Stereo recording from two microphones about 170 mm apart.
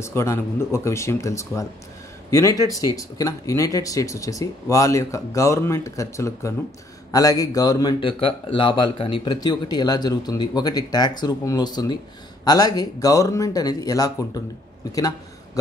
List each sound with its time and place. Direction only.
0.0 s speech: 15° left (ahead or behind)